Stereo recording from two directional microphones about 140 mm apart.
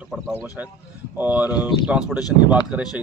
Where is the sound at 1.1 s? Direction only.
10° right (ahead or behind).